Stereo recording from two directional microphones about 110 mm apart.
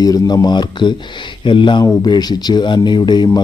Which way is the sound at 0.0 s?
35° left (ahead or behind).